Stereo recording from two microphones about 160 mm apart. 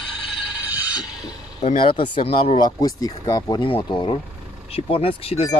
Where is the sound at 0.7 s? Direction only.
10° right (ahead or behind).